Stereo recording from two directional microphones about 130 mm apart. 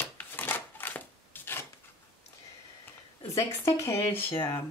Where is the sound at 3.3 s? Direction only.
25° left (ahead or behind).